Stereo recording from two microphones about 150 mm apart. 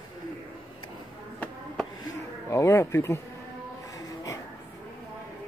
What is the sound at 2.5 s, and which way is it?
Speech, 20° left (ahead or behind).